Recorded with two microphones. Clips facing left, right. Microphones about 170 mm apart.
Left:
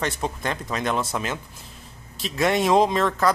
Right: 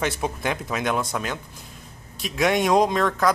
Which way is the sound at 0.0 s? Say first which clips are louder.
Right 1 dB; 5° right (ahead or behind).